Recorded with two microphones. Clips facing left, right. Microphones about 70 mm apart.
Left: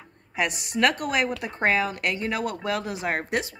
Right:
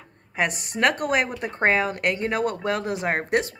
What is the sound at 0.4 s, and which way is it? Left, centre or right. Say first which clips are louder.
Speech: right 1 dB; right.